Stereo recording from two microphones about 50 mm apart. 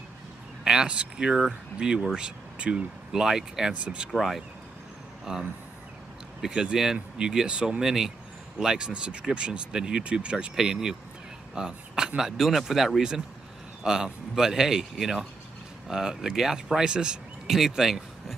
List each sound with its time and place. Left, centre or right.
0.7 s speech: centre
3.8 s speech: right
5.2 s speech: centre
11.5 s a sound: centre
12.2 s speech: centre